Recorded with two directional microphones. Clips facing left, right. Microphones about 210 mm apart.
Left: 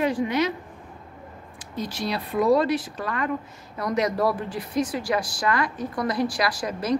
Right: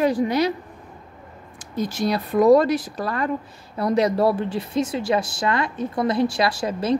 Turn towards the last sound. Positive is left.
turn(degrees=-25)  # may be behind; listen again after turning